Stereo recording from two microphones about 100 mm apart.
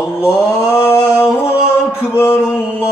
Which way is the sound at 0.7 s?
20° left (ahead or behind).